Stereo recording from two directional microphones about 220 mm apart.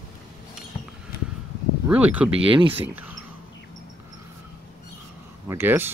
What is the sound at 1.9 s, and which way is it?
Speech, 5° right (ahead or behind).